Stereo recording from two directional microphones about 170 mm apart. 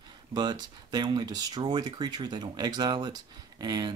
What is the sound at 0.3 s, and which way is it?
Speech, 25° right (ahead or behind).